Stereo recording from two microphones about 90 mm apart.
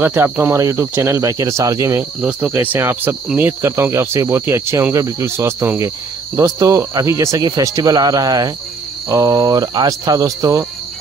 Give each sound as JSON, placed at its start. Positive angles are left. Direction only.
{"t": 0.0, "sound": "speech", "side_deg": -25}
{"t": 2.5, "sound": "cricket", "side_deg": -25}
{"t": 4.9, "sound": "speech", "side_deg": -35}